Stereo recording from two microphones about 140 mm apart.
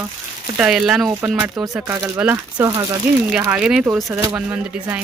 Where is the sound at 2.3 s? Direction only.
20° right (ahead or behind).